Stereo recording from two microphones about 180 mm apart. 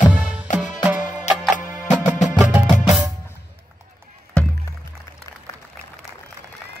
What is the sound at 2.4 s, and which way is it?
Music, 10° right (ahead or behind).